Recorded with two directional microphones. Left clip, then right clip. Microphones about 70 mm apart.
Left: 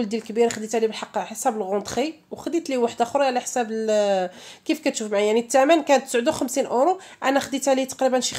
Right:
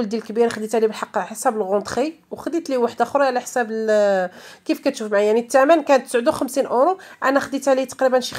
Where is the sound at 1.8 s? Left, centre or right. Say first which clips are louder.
Right 3 dB; right.